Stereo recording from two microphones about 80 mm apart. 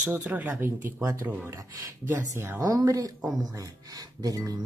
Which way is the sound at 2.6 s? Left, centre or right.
Right.